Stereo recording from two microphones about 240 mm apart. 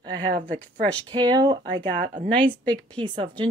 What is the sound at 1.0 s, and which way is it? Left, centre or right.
Speech, centre.